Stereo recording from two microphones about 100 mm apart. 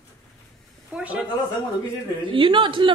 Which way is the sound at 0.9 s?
10° right (ahead or behind).